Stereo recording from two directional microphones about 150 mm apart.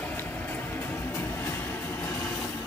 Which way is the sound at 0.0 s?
10° left (ahead or behind).